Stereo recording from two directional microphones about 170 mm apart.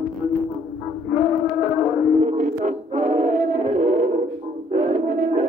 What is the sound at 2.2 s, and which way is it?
Music, 40° right (ahead or behind).